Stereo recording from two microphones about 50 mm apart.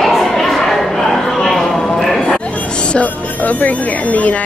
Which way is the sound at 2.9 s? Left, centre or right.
Left.